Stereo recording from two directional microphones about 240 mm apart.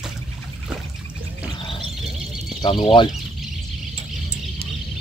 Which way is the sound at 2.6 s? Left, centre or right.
Left.